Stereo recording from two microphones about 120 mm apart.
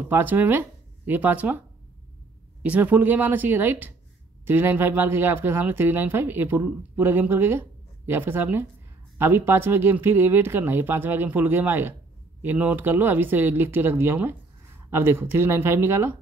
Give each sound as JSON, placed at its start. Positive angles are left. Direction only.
{"t": 0.1, "sound": "speech", "side_deg": -15}
{"t": 2.6, "sound": "speech", "side_deg": -15}